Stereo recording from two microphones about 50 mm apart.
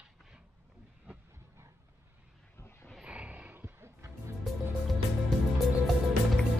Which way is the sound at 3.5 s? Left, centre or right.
Right.